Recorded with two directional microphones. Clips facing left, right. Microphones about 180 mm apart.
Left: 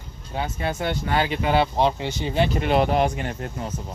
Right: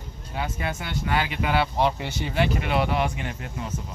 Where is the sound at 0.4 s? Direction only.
30° left (ahead or behind).